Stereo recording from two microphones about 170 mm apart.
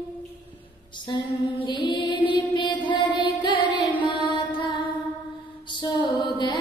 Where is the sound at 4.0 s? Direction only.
30° left (ahead or behind).